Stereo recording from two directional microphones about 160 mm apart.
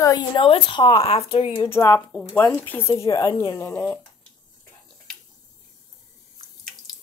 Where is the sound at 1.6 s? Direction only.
15° left (ahead or behind).